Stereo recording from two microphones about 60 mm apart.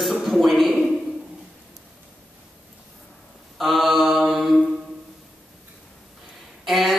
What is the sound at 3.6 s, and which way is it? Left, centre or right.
Mantra, centre.